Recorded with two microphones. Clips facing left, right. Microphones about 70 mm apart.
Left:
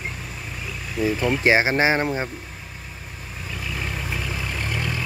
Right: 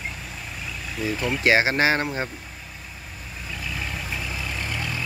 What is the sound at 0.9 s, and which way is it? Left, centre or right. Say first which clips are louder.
Speech: left 5 dB; centre.